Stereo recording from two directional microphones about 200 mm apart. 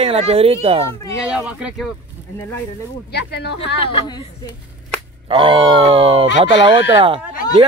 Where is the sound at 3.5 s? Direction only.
25° left (ahead or behind).